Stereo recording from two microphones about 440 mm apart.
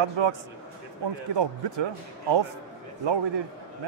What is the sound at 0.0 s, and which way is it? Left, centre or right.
Speech, right.